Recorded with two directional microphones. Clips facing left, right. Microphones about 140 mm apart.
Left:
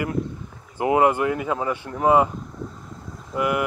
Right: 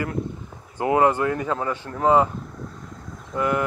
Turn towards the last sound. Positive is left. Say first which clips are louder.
# even
turn(degrees=10)  # may be behind; listen again after turning